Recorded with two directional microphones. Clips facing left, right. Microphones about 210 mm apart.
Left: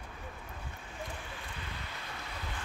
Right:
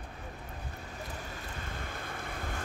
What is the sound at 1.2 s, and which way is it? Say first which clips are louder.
Vehicle: right 3 dB; 40° right (ahead or behind).